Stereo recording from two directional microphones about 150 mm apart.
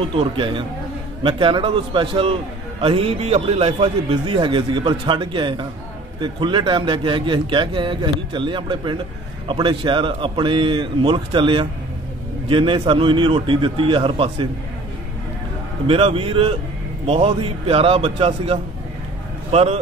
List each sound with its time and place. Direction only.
0.0 s a man's voice: 35° right (ahead or behind)
15.9 s a man's voice: 40° right (ahead or behind)